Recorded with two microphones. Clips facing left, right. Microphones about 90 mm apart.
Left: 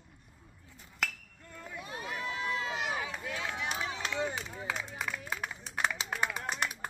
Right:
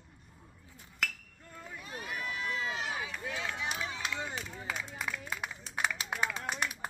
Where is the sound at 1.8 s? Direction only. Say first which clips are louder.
Left 1 dB; 25° left (ahead or behind).